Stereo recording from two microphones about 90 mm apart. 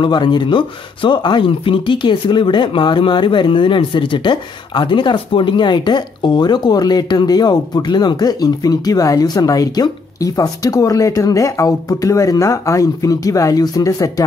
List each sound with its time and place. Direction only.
0.0 s speech: 60° left (ahead or behind); by 14.2 s 40° left (ahead or behind)